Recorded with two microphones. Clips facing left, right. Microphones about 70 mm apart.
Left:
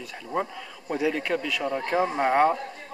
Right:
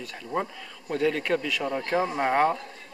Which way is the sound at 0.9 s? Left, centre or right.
Centre.